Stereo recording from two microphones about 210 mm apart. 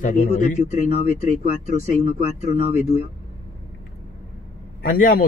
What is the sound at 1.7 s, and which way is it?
Speech, 30° right (ahead or behind).